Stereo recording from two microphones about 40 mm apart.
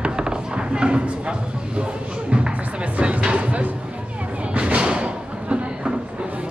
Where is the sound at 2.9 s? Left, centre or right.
Right.